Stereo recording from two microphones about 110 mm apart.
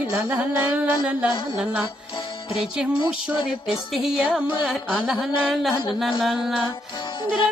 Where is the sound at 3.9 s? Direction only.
5° right (ahead or behind).